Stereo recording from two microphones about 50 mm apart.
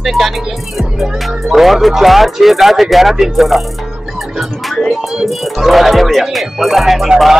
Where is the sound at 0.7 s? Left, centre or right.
Centre.